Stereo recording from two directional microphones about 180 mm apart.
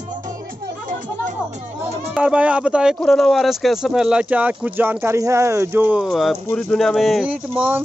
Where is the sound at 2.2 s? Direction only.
5° right (ahead or behind).